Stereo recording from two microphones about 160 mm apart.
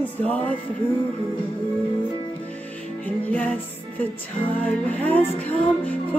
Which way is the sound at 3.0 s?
10° left (ahead or behind).